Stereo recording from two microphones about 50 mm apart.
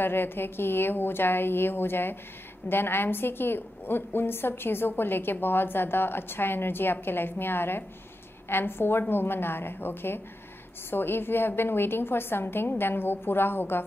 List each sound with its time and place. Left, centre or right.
0.0 s a woman's voice: left